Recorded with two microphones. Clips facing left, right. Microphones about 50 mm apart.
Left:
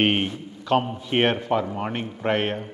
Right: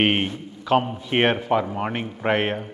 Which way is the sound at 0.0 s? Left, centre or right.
Centre.